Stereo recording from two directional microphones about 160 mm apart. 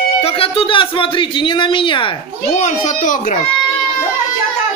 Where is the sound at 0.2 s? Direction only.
35° left (ahead or behind).